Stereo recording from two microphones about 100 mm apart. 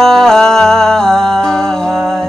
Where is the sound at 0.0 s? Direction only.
5° left (ahead or behind).